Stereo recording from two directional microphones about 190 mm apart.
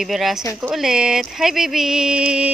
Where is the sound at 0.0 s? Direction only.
Centre (ahead or behind).